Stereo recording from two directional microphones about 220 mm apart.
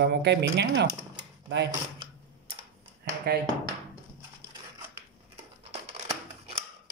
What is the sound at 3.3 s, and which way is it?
Speech, 45° right (ahead or behind).